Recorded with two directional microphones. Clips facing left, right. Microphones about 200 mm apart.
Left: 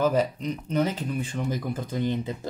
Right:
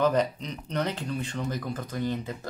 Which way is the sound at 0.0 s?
5° left (ahead or behind).